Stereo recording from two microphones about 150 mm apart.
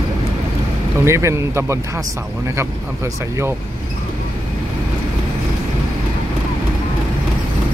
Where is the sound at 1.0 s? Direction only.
20° right (ahead or behind).